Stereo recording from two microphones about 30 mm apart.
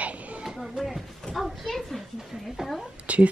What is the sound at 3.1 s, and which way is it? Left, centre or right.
Speech, right.